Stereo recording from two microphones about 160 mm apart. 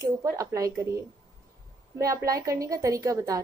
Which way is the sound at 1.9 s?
20° right (ahead or behind).